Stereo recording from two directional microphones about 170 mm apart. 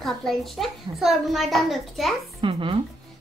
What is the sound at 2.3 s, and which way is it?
Speech, 30° right (ahead or behind).